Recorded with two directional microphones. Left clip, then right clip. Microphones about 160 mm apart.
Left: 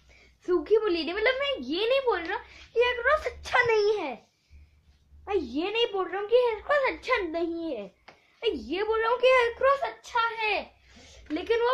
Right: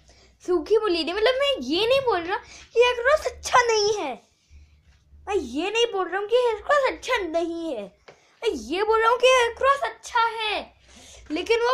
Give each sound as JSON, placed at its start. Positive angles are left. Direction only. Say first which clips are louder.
{"t": 0.4, "sound": "a woman's voice", "louder": "right 3 dB", "side_deg": 0}
{"t": 5.2, "sound": "speech", "louder": "right 3 dB", "side_deg": 0}
{"t": 11.3, "sound": "a woman's voice", "louder": "right 4 dB", "side_deg": -20}